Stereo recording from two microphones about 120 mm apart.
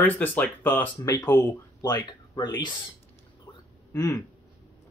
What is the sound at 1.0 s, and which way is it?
Speech, 35° left (ahead or behind).